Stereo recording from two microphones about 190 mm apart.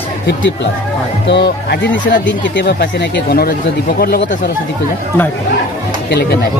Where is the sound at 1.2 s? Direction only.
60° left (ahead or behind).